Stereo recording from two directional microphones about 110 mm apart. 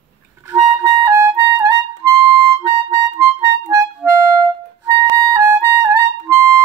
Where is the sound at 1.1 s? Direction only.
25° right (ahead or behind).